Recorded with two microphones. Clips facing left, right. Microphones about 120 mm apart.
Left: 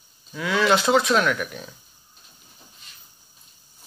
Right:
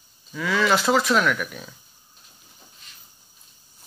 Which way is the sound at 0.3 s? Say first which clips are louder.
Left 1 dB; centre (ahead or behind).